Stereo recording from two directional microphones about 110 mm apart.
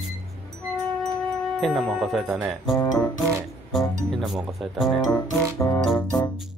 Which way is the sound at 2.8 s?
30° left (ahead or behind).